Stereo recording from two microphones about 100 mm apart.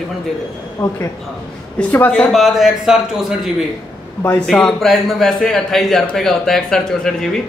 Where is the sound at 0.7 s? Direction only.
30° left (ahead or behind).